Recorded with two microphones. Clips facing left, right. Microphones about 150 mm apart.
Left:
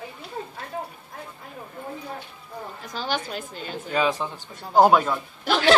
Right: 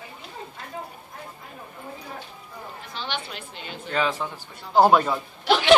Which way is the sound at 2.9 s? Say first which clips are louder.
Left 5 dB; 40° left (ahead or behind).